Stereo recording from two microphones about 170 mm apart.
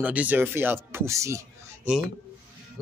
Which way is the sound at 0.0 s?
10° right (ahead or behind).